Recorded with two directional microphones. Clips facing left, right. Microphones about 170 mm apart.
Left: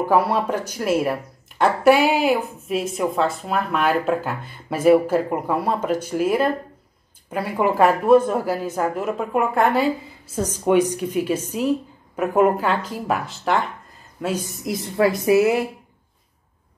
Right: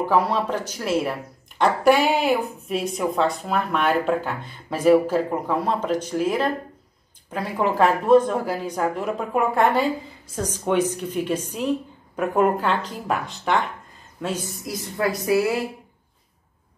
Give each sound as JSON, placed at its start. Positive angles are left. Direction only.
{"t": 0.0, "sound": "a woman's voice", "side_deg": 10}
{"t": 14.2, "sound": "a woman's voice", "side_deg": 10}